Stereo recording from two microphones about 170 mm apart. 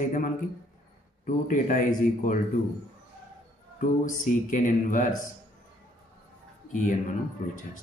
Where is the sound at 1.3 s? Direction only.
50° left (ahead or behind).